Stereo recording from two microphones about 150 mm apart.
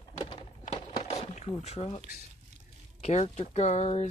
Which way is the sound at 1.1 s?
45° left (ahead or behind).